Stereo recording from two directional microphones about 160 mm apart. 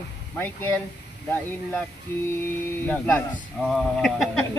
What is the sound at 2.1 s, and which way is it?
Speech, 10° left (ahead or behind).